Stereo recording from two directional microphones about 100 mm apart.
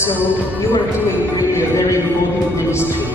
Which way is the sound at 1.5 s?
30° left (ahead or behind).